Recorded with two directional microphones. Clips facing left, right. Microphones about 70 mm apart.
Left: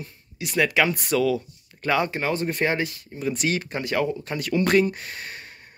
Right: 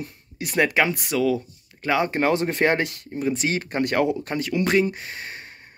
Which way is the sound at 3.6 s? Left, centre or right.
Right.